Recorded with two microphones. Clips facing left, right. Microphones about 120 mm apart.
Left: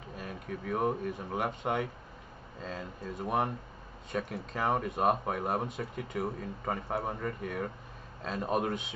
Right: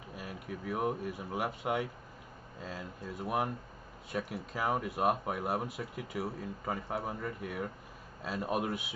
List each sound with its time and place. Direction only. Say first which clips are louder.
0.1 s speech: left 2 dB; 5° right (ahead or behind)